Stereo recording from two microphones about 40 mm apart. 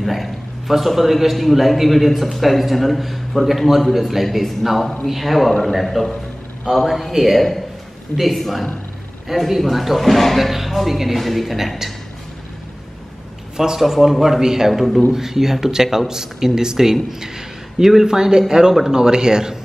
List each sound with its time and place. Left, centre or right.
0.0 s a man's voice: centre
6.9 s a man's voice: centre
13.6 s speech: centre
14.7 s a man's voice: centre